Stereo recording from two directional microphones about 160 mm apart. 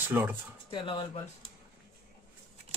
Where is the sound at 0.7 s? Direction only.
30° left (ahead or behind).